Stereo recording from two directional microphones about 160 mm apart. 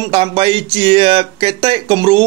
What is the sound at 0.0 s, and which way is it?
Speech, 30° right (ahead or behind).